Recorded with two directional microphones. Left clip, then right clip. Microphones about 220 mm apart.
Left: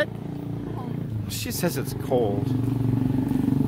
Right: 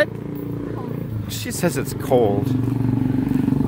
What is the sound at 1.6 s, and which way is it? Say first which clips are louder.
Speech: right 6 dB; 5° right (ahead or behind).